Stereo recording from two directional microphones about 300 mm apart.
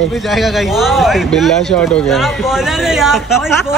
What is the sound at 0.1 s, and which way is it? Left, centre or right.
A man's voice, centre.